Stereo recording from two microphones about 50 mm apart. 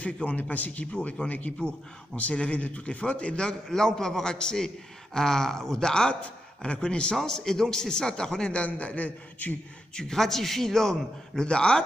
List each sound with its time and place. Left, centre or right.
0.0 s a man's voice: left
0.9 s a man's voice: left
3.6 s a man's voice: centre; by 9.6 s left
9.9 s a man's voice: centre